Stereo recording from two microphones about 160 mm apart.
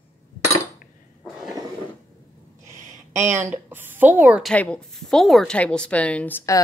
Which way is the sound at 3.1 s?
15° right (ahead or behind).